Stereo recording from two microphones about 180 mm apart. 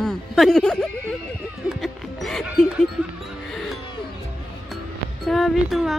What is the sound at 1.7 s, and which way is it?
Music, centre (ahead or behind).